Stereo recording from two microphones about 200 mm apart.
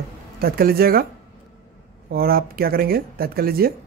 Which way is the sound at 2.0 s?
50° right (ahead or behind).